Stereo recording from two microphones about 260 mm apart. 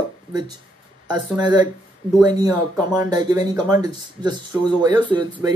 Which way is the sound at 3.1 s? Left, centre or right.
Centre.